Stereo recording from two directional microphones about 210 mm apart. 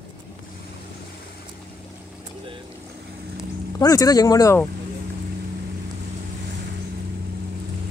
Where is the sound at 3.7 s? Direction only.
15° left (ahead or behind).